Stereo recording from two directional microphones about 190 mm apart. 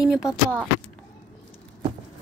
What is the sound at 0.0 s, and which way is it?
Speech, centre (ahead or behind).